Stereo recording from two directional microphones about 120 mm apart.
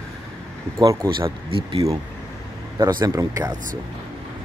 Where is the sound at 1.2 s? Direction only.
50° right (ahead or behind).